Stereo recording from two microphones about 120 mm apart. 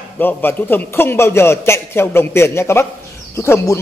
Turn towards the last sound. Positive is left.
turn(degrees=25)  # may be behind; listen again after turning